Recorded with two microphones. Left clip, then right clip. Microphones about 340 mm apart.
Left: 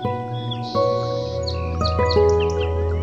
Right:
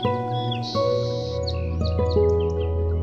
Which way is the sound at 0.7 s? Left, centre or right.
Centre.